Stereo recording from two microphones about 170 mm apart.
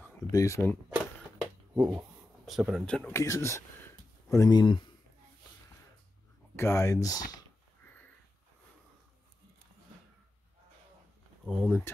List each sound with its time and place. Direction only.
0.3 s speech: 20° left (ahead or behind)
0.8 s a sound: centre (ahead or behind)
2.4 s speech: centre (ahead or behind)
3.1 s speech: 15° left (ahead or behind)
6.5 s speech: 15° left (ahead or behind)
11.4 s speech: centre (ahead or behind)